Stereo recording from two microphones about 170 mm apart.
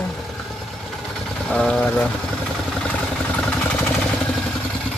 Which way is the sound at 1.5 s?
5° left (ahead or behind).